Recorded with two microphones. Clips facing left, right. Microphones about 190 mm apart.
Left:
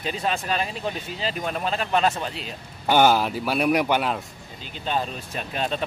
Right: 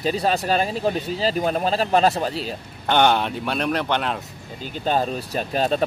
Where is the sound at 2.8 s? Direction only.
5° left (ahead or behind).